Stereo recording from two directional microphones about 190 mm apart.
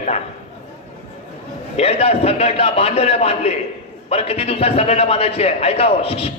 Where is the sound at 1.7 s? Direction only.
30° left (ahead or behind).